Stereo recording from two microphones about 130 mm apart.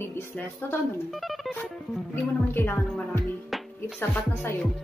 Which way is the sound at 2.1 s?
15° left (ahead or behind).